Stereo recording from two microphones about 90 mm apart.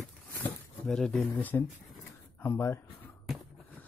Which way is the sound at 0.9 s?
5° left (ahead or behind).